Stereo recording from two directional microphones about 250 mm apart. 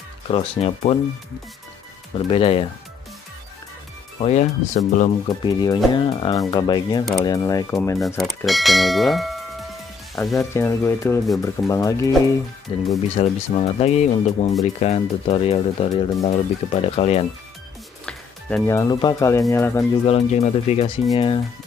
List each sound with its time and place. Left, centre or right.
0.3 s speech: left
2.1 s speech: left
4.2 s speech: left
5.4 s speech: centre
8.0 s speech: centre
10.3 s speech: centre
18.0 s speech: centre
20.1 s speech: left